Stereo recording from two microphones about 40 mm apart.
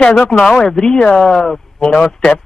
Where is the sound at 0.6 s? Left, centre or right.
Centre.